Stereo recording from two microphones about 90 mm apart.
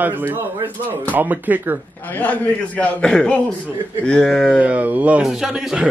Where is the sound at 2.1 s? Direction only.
15° left (ahead or behind).